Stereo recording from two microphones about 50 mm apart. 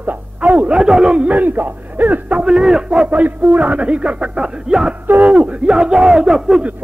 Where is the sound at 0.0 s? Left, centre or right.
Right.